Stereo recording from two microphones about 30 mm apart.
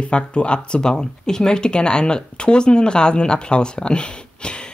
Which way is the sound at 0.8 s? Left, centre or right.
Left.